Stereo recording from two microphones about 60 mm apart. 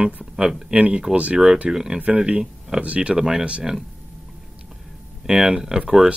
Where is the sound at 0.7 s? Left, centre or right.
Centre.